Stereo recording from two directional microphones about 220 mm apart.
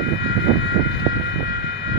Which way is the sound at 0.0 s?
55° left (ahead or behind).